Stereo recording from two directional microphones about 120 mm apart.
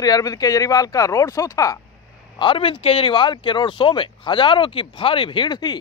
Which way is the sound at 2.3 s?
45° left (ahead or behind).